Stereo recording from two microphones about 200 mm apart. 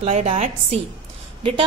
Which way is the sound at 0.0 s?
35° right (ahead or behind).